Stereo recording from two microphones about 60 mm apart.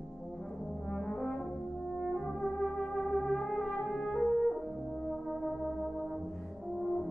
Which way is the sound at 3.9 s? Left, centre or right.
Centre.